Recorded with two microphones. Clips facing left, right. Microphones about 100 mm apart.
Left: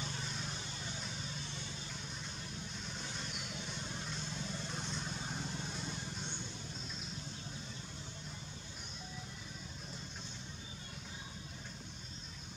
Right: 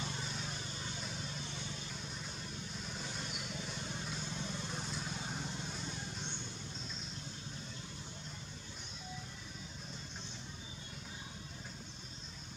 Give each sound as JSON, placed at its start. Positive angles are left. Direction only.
{"t": 0.2, "sound": "vehicle", "side_deg": 0}
{"t": 2.9, "sound": "vehicle", "side_deg": 0}